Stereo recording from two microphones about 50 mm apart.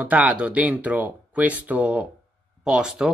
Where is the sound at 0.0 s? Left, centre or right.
Right.